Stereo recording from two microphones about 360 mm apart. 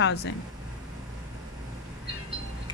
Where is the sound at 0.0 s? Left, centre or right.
Left.